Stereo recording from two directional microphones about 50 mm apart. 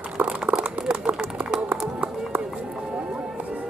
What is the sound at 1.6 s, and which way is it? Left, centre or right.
Run, right.